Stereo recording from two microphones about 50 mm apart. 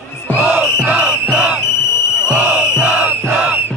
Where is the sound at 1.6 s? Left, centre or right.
Left.